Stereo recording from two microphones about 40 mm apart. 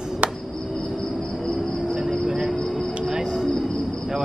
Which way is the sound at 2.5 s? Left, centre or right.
Left.